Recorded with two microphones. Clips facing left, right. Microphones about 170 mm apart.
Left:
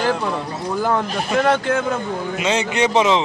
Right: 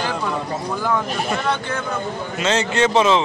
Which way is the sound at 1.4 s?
90° left.